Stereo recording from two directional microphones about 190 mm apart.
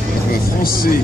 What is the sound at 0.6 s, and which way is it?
Speech, 50° left (ahead or behind).